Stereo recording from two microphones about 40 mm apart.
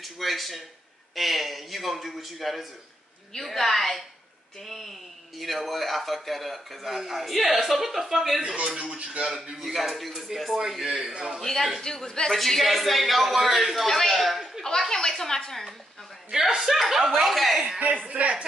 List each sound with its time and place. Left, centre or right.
0.0 s speech: centre
8.9 s speech: right
9.6 s speech: centre
11.4 s a woman's voice: centre
16.3 s speech: centre
17.7 s speech: right